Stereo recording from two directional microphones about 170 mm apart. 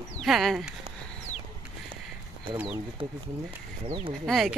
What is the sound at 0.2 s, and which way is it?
Speech, centre (ahead or behind).